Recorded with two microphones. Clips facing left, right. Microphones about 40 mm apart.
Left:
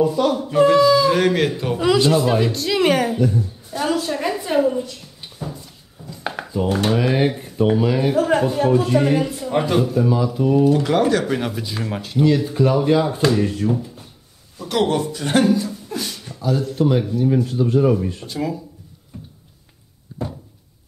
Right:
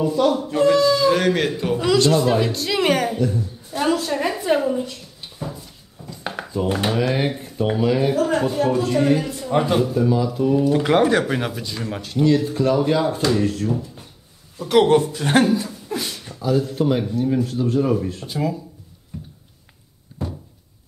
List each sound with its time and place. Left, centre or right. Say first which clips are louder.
0.0 s a woman's voice: left 1 dB; centre
6.0 s dishes: left 2 dB; centre
6.9 s speech: left 3 dB; centre
8.2 s a sound: left 2 dB; centre
8.7 s speech: left 2 dB; centre
10.7 s speech: even; right; by 11.6 s centre
11.6 s speech: left 2 dB; centre
14.7 s speech: right 4 dB; centre
18.2 s speech: right 1 dB; centre